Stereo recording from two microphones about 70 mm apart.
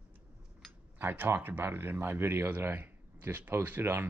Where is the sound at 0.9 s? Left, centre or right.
Right.